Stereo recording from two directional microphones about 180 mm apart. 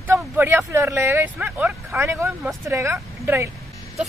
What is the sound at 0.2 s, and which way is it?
Speech, 10° right (ahead or behind).